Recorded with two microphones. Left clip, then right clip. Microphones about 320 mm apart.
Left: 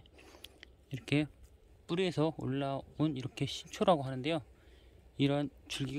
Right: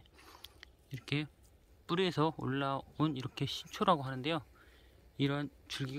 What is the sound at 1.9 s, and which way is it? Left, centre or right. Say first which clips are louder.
Speech: even; centre.